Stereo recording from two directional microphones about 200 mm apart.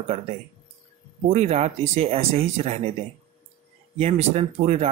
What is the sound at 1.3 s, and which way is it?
Speech, 30° right (ahead or behind).